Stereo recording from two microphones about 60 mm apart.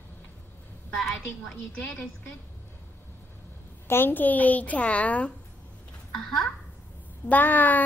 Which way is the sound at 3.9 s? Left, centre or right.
Left.